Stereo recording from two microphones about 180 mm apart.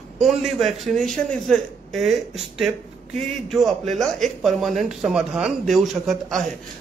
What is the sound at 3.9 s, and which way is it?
A man's voice, centre (ahead or behind).